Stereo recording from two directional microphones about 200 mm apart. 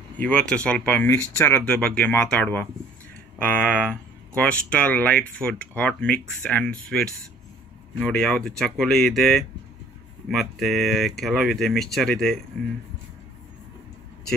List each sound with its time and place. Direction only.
0.2 s speech: 5° left (ahead or behind)